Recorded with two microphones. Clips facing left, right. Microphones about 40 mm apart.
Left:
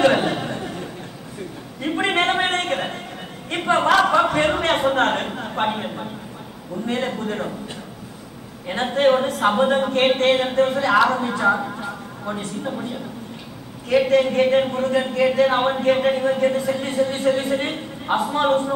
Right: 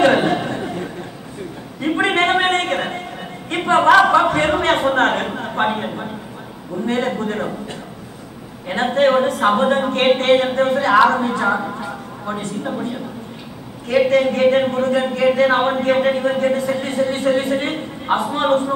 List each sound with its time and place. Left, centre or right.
0.0 s a sound: centre
4.1 s speech: centre
8.6 s a woman's voice: centre
14.0 s speech: centre